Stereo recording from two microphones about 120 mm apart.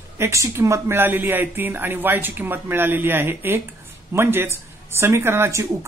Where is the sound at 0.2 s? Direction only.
25° right (ahead or behind).